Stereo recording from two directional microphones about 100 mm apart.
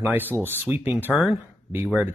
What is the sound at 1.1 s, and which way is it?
Speech, 5° right (ahead or behind).